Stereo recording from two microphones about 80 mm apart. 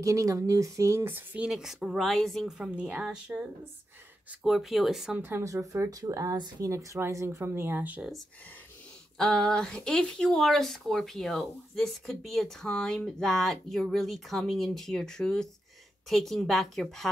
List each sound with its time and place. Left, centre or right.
0.0 s speech: right
1.0 s speech: right
1.4 s speech: centre
2.4 s a woman's voice: centre
4.5 s speech: centre
5.1 s speech: right
5.4 s speech: right
6.3 s speech: right
6.7 s speech: right
9.2 s speech: centre